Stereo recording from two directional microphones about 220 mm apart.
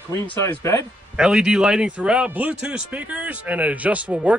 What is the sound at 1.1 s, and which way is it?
Speech, 5° right (ahead or behind).